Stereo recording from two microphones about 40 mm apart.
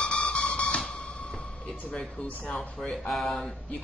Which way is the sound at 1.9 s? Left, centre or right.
Centre.